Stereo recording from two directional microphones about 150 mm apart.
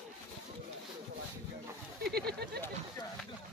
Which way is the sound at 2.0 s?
90° right.